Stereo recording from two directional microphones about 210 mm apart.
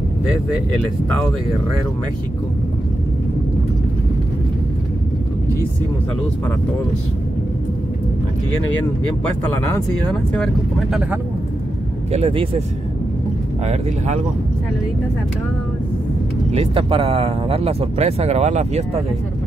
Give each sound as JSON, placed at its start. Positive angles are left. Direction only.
{"t": 9.2, "sound": "speech", "side_deg": 10}
{"t": 12.1, "sound": "speech", "side_deg": -25}
{"t": 13.7, "sound": "speech", "side_deg": -30}
{"t": 16.5, "sound": "speech", "side_deg": -25}